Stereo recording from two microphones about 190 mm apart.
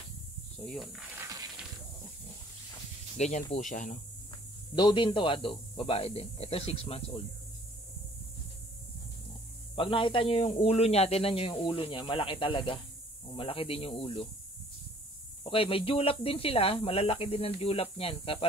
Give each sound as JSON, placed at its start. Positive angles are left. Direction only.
{"t": 0.6, "sound": "speech", "side_deg": 0}
{"t": 1.2, "sound": "a sound", "side_deg": -20}
{"t": 3.2, "sound": "speech", "side_deg": 35}
{"t": 4.7, "sound": "a man's voice", "side_deg": 25}
{"t": 9.8, "sound": "a man's voice", "side_deg": 25}
{"t": 15.4, "sound": "a man's voice", "side_deg": 30}